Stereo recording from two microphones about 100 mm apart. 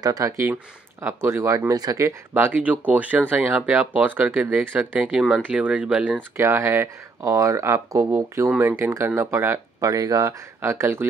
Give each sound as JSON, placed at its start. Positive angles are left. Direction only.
{"t": 0.0, "sound": "speech", "side_deg": -40}
{"t": 1.0, "sound": "speech", "side_deg": -25}
{"t": 2.3, "sound": "speech", "side_deg": -15}
{"t": 6.3, "sound": "speech", "side_deg": -25}